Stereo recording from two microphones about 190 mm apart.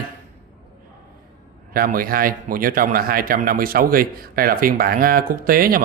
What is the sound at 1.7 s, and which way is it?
Speech, 50° right (ahead or behind).